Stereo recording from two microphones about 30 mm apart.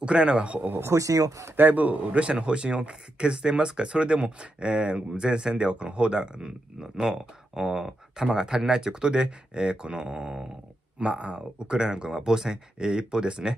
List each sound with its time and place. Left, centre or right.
0.0 s speech: right
1.6 s a man's voice: right
2.1 s speech: right